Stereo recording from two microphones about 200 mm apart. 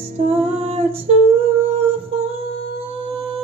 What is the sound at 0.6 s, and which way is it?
Female singing, 30° right (ahead or behind).